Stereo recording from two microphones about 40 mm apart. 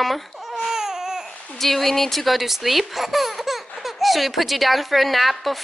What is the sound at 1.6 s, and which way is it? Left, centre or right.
Speech, centre.